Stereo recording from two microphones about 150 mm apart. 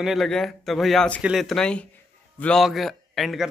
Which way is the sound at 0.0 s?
Centre (ahead or behind).